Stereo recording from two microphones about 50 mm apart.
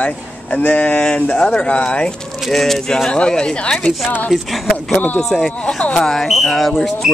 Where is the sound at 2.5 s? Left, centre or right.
Centre.